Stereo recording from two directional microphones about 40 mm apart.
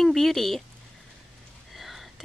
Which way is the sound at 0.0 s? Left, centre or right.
Centre.